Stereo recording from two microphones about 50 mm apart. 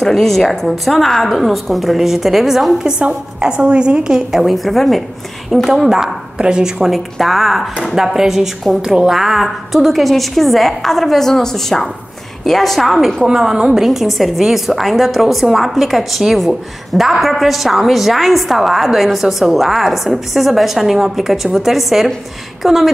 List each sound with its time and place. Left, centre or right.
0.0 s a woman's voice: centre
3.0 s a woman's voice: centre
13.3 s a woman's voice: centre